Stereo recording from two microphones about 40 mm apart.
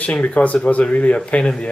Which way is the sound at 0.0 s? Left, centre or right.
Left.